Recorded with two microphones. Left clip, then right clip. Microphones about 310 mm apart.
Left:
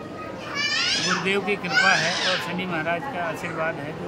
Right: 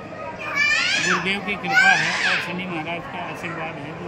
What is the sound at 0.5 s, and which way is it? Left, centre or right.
Children playing, centre.